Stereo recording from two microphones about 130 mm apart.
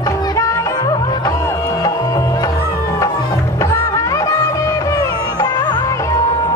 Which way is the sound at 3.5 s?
25° left (ahead or behind).